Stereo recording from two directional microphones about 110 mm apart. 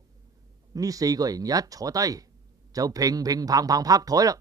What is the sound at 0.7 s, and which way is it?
Speech, 35° right (ahead or behind).